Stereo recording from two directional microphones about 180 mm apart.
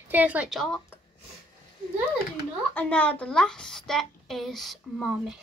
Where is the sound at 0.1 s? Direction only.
10° right (ahead or behind).